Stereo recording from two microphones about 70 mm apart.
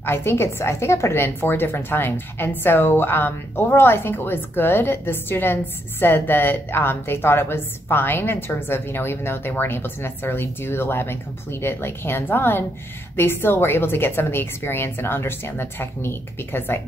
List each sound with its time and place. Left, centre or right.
0.0 s a woman's voice: left